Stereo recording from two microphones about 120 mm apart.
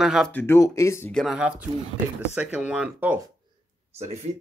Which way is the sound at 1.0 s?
5° left (ahead or behind).